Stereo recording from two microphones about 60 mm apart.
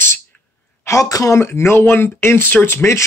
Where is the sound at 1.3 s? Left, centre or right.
Left.